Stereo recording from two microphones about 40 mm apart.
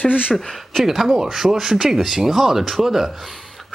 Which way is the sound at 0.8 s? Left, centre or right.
Centre.